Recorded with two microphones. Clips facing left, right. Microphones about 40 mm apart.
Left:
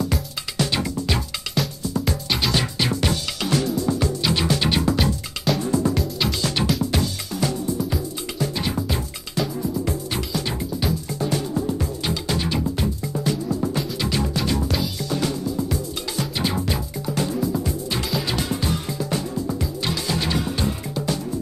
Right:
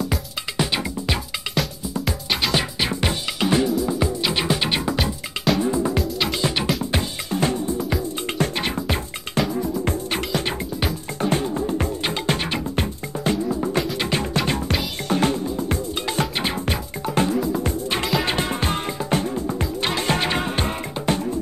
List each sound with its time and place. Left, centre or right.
0.6 s music: centre
2.5 s music: centre
4.9 s music: centre
5.6 s music: right
5.9 s music: centre
6.4 s music: centre
8.4 s music: right